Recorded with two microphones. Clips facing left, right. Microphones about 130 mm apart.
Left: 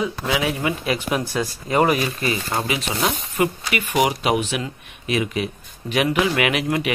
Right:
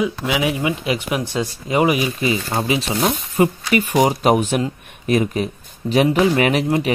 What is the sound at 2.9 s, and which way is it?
Speech, 45° right (ahead or behind).